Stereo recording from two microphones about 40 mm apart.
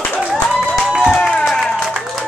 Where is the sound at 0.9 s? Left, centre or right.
Centre.